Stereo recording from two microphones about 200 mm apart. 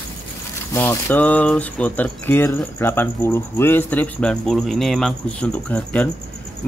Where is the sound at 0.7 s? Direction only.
10° left (ahead or behind).